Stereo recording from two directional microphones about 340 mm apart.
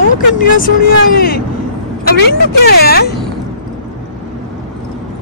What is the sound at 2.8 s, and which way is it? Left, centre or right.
Speech, left.